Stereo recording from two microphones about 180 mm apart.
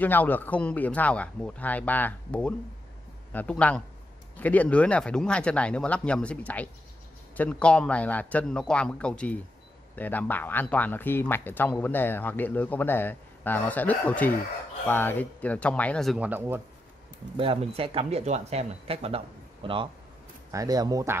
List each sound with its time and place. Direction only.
0.0 s speech: 10° left (ahead or behind)
16.3 s speech: 10° right (ahead or behind)
17.4 s speech: 30° right (ahead or behind)